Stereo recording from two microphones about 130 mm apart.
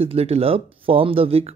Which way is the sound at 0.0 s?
50° right (ahead or behind).